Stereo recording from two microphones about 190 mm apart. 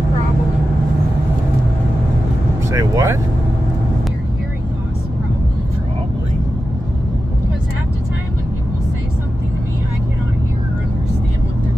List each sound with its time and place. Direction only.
2.7 s vehicle: 15° right (ahead or behind)